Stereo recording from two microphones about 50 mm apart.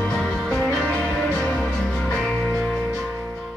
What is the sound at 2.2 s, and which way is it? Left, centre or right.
Music, centre.